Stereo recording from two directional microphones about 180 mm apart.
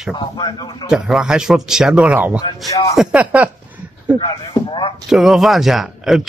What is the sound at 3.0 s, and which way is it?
Speech, 5° right (ahead or behind).